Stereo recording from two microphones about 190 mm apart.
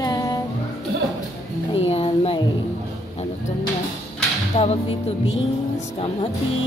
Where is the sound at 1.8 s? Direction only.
30° left (ahead or behind).